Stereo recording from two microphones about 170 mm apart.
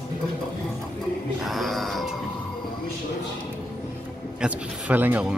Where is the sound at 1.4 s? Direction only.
Centre (ahead or behind).